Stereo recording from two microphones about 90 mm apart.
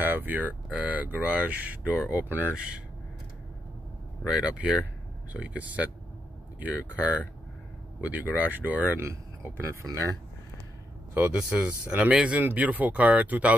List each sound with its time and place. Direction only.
0.0 s speech: 20° right (ahead or behind)
4.3 s speech: 10° right (ahead or behind)
7.0 s speech: 15° right (ahead or behind)
9.0 s speech: 30° right (ahead or behind)
11.1 s speech: 15° right (ahead or behind)